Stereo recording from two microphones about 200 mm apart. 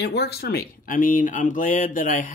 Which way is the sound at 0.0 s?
55° left (ahead or behind).